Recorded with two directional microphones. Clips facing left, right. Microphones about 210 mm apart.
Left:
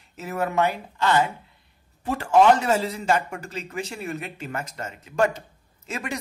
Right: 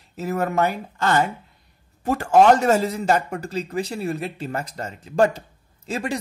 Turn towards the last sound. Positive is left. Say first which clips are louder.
# right 5 dB
turn(degrees=-30)  # may be behind; listen again after turning